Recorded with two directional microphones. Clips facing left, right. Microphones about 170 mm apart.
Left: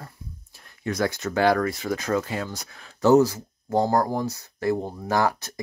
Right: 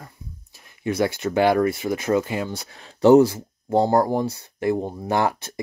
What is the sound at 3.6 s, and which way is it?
Speech, 15° right (ahead or behind).